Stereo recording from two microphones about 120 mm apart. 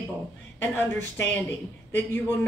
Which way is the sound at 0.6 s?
15° left (ahead or behind).